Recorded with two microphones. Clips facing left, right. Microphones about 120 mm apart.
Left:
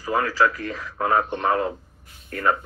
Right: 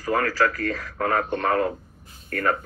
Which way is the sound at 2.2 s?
45° right (ahead or behind).